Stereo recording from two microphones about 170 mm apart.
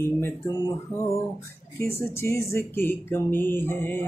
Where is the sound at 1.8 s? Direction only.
15° left (ahead or behind).